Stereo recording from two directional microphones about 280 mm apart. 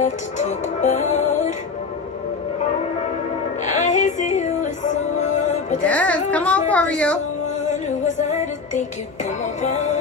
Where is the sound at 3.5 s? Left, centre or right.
Left.